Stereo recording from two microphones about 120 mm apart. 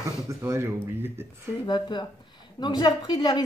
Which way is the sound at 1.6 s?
40° left (ahead or behind).